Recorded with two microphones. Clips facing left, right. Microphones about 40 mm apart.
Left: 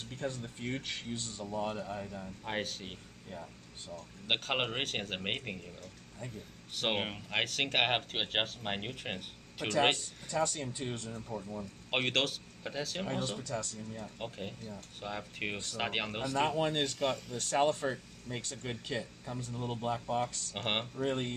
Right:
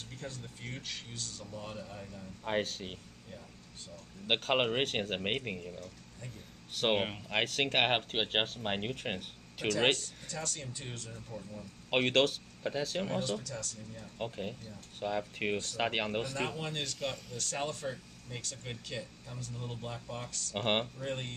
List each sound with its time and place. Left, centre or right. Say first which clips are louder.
0.7 s speech: left 6 dB; left
2.4 s speech: right 4 dB; centre
4.3 s speech: right 3 dB; centre
6.7 s speech: right 3 dB; centre
9.9 s speech: left 8 dB; left
11.9 s speech: right 4 dB; centre
13.1 s speech: right 1 dB; centre
14.1 s speech: right 3 dB; centre
16.5 s speech: left 7 dB; left
20.5 s speech: right 4 dB; centre
20.9 s speech: left 5 dB; left